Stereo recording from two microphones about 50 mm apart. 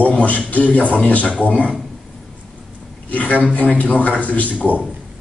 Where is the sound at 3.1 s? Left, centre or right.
Left.